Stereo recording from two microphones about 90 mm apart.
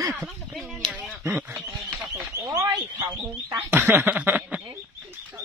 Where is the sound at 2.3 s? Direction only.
40° left (ahead or behind).